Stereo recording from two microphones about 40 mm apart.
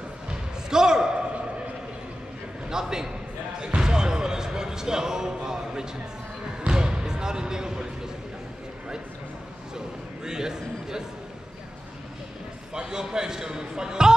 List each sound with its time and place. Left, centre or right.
0.3 s slam: centre
2.7 s a man's voice: centre
3.6 s basketball bounce: centre
10.2 s a sound: centre
12.7 s a man's voice: centre